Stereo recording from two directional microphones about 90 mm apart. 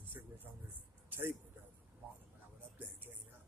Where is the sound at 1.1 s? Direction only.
20° right (ahead or behind).